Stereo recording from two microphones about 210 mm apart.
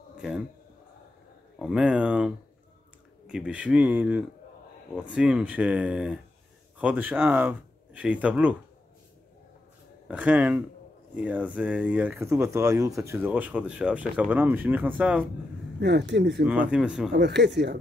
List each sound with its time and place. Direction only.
1.6 s speech: 5° right (ahead or behind)
10.0 s speech: 5° right (ahead or behind)
15.8 s speech: 55° right (ahead or behind)
16.4 s speech: 5° right (ahead or behind)
17.1 s speech: 55° right (ahead or behind)